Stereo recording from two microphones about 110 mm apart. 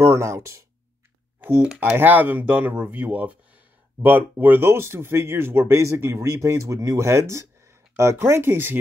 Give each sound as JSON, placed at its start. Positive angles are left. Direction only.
{"t": 0.0, "sound": "speech", "side_deg": -25}